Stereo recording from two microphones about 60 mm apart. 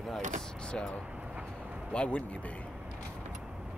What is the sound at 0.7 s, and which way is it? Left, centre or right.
Speech, centre.